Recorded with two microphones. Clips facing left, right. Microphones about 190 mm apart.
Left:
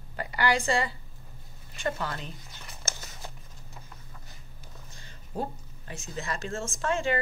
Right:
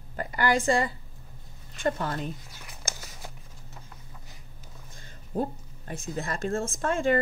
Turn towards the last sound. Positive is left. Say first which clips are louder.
# right 3 dB
turn(degrees=-50)  # may be behind; listen again after turning